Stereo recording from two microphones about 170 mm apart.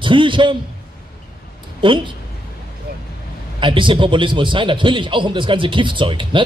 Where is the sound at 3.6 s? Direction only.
30° right (ahead or behind).